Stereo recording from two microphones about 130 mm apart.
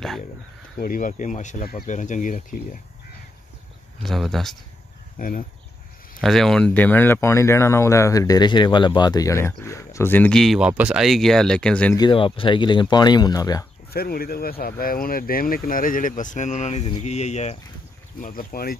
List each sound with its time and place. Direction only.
0.8 s speech: 90° left
4.0 s speech: centre (ahead or behind)
6.2 s speech: 5° left (ahead or behind)
12.1 s speech: 40° left (ahead or behind)
14.7 s speech: 90° left; by 17.6 s 60° left (ahead or behind)
18.2 s speech: 90° left